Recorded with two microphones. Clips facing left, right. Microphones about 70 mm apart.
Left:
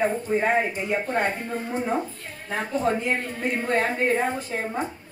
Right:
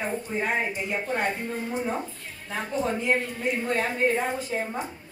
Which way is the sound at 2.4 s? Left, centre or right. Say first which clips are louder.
Left 3 dB; left.